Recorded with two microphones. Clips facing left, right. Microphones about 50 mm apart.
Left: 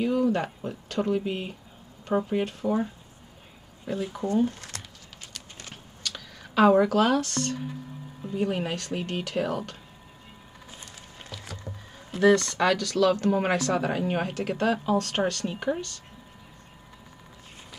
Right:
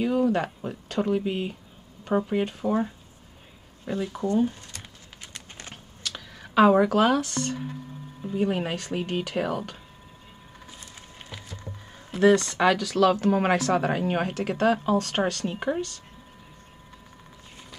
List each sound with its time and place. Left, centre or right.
0.1 s a sound: centre
0.4 s speech: centre
3.8 s speech: centre
4.6 s a sound: left
5.2 s clip-clop: right
6.0 s speech: centre
12.1 s speech: centre